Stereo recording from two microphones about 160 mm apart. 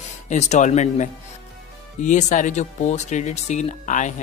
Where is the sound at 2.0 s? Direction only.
50° left (ahead or behind).